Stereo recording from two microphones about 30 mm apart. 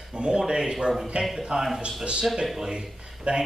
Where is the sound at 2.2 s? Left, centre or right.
Centre.